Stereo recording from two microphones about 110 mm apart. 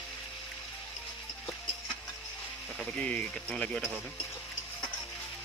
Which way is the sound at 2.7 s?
10° left (ahead or behind).